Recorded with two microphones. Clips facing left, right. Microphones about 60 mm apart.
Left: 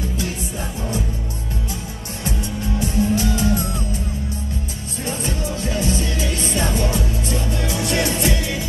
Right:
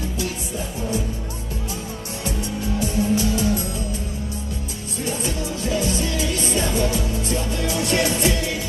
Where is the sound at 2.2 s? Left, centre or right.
Left.